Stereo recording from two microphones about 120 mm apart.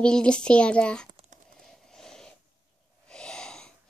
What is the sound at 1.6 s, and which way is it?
Vehicle, 5° left (ahead or behind).